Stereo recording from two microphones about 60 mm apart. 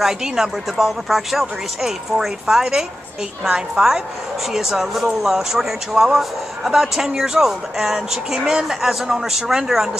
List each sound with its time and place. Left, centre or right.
0.0 s speech: centre